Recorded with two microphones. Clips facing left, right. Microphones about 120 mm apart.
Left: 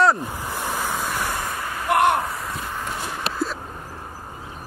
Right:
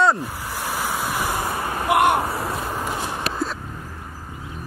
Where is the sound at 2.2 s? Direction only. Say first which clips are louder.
Right 3 dB; 30° right (ahead or behind).